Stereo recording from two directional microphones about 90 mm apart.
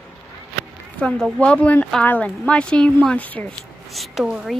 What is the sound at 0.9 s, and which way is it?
A woman's voice, 10° left (ahead or behind).